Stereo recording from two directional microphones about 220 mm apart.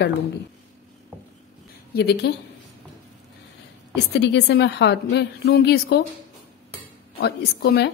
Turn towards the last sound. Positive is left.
turn(degrees=45)  # may be behind; listen again after turning